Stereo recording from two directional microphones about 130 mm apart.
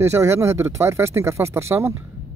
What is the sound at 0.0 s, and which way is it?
Speech, 20° right (ahead or behind).